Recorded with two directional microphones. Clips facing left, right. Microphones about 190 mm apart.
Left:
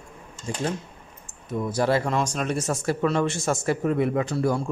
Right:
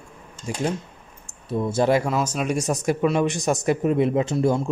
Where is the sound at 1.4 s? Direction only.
30° right (ahead or behind).